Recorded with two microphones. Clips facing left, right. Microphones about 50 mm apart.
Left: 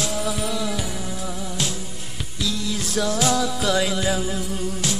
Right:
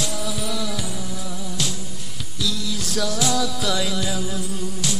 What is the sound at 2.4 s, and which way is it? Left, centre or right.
Music, left.